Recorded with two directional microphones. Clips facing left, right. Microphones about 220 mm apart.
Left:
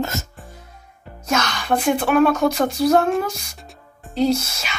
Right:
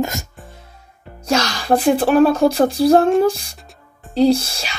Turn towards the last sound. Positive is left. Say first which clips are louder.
# right 4 dB
turn(degrees=-35)  # may be behind; listen again after turning